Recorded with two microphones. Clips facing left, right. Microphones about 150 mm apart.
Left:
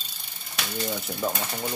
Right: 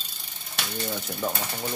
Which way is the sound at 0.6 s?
Centre (ahead or behind).